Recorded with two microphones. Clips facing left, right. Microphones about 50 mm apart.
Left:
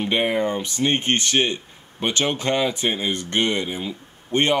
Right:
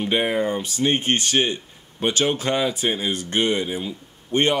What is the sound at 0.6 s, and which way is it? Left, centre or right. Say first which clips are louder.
Speech: even; left.